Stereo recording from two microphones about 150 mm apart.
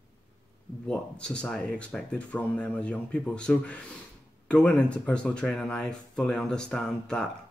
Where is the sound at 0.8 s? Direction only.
5° left (ahead or behind).